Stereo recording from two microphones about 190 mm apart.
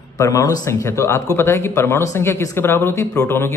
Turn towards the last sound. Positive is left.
turn(degrees=10)  # may be behind; listen again after turning